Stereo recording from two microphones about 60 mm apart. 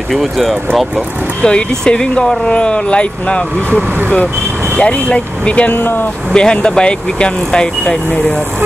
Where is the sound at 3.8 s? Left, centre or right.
Right.